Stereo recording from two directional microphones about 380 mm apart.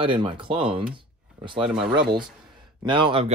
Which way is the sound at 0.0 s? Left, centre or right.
Centre.